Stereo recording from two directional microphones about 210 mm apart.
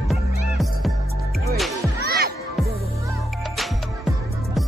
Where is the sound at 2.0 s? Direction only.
50° right (ahead or behind).